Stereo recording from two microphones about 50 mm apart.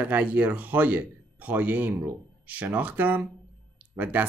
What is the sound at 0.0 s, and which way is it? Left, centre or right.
A man's voice, right.